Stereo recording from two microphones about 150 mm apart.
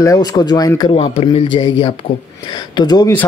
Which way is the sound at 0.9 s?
35° left (ahead or behind).